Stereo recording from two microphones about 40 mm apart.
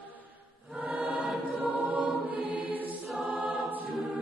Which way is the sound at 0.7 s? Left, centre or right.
Right.